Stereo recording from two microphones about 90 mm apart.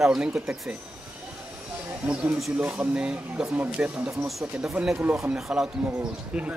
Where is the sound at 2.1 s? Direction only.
15° right (ahead or behind).